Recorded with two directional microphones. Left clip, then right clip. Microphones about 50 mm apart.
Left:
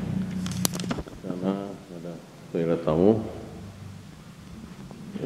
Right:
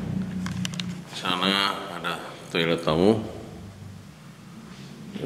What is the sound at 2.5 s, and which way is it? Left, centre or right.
Speech, right.